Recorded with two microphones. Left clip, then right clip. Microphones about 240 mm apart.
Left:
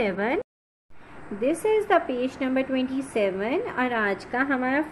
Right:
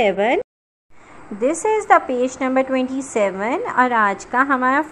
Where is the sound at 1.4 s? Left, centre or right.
Centre.